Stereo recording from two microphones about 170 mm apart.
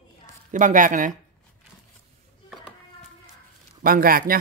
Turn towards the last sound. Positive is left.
turn(degrees=-60)  # may be behind; listen again after turning